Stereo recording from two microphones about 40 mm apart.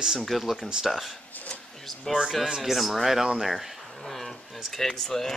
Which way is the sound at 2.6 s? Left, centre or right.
Centre.